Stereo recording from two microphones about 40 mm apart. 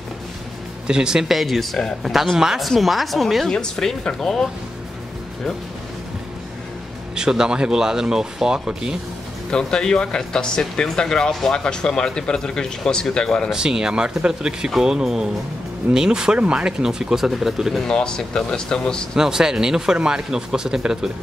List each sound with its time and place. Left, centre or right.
0.8 s speech: centre
1.3 s a woman's voice: centre
2.3 s speech: centre
2.8 s a woman's voice: centre
3.5 s speech: centre
7.2 s speech: centre
9.5 s speech: left
13.5 s speech: centre
16.8 s speech: centre
17.8 s speech: centre
19.1 s speech: centre